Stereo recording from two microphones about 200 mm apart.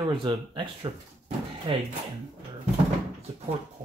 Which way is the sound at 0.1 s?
25° right (ahead or behind).